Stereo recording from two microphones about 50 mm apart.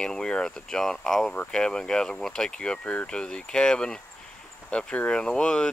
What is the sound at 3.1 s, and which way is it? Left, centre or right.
Speech, centre.